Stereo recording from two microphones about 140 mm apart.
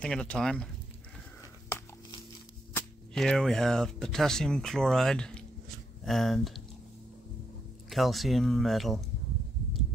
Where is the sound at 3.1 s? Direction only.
Centre (ahead or behind).